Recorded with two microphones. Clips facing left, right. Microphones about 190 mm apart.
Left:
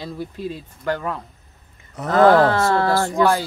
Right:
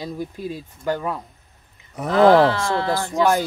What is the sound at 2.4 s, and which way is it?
Speech, 50° left (ahead or behind).